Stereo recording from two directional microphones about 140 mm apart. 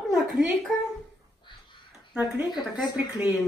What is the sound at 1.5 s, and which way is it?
Crow, 35° left (ahead or behind).